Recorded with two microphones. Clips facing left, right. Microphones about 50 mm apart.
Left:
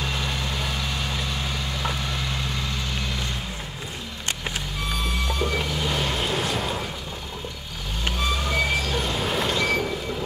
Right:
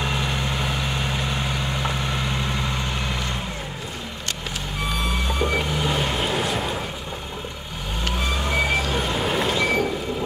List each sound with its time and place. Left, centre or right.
0.0 s vehicle: right
5.3 s vehicle: centre
8.5 s vehicle: centre